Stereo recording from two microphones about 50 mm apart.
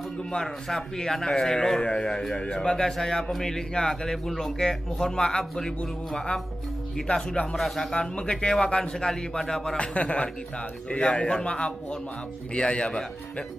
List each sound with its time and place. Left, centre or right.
0.3 s a man's voice: centre
7.5 s a man's voice: centre
7.9 s a man's voice: left
9.8 s a man's voice: left